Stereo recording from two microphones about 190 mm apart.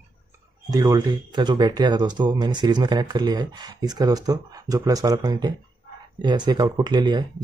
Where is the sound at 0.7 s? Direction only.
20° right (ahead or behind).